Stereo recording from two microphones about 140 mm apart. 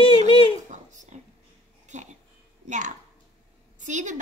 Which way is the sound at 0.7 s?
60° right (ahead or behind).